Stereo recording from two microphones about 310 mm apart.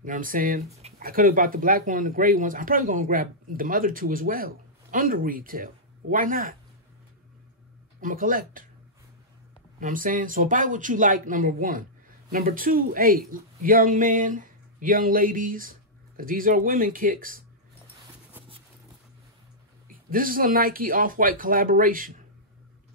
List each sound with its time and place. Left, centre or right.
0.0 s speech: right
8.0 s speech: right
9.8 s speech: right
19.9 s speech: right